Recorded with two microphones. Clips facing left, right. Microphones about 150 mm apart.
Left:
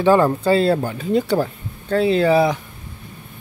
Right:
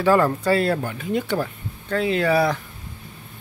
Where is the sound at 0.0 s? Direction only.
25° left (ahead or behind).